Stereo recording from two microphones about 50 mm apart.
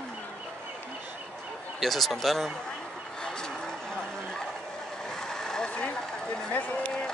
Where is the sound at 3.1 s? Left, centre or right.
Centre.